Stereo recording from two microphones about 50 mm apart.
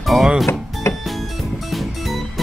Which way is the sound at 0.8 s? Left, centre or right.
Left.